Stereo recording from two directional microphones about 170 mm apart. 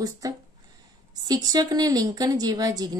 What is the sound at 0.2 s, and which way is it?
A woman's voice, 20° right (ahead or behind).